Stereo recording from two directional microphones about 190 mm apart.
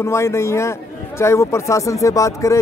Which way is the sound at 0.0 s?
15° left (ahead or behind).